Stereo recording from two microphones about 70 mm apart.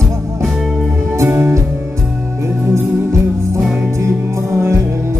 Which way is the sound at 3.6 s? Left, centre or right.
Centre.